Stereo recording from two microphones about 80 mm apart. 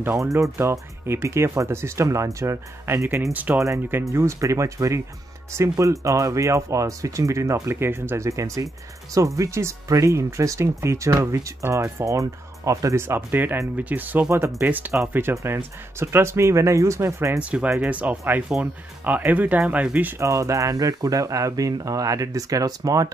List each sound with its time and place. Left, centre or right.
0.2 s speech: right
17.4 s speech: centre
20.2 s speech: right